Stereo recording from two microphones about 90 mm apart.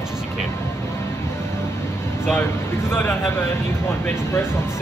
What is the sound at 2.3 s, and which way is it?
Speech, 25° left (ahead or behind).